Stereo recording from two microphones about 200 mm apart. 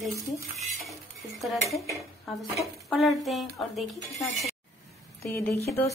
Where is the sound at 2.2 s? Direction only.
Centre (ahead or behind).